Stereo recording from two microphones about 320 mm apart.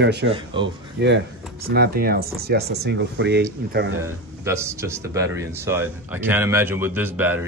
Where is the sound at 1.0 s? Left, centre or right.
Right.